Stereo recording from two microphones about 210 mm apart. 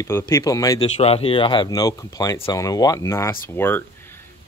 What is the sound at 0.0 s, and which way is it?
Speech, 15° left (ahead or behind).